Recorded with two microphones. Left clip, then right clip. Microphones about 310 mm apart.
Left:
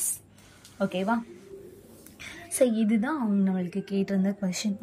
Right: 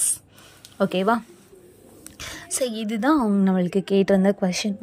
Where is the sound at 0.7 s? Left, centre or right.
Centre.